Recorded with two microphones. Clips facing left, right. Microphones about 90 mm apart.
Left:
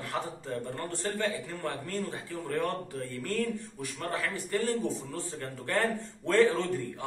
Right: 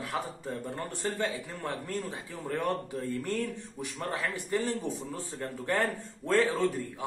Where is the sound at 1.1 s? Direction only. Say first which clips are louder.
Left 1 dB; 15° right (ahead or behind).